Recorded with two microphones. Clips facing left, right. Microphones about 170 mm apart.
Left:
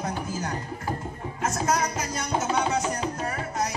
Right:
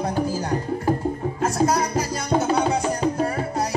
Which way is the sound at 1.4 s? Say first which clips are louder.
Right 4 dB; 35° right (ahead or behind).